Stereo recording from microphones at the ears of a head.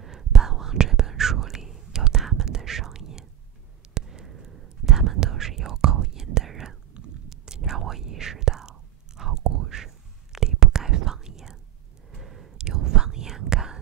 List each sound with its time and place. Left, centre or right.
0.0 s whispering: right